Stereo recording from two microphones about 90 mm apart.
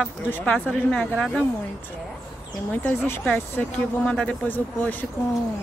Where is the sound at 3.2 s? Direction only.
15° left (ahead or behind).